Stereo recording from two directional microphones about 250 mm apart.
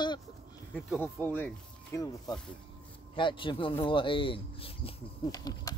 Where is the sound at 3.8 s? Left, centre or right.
Centre.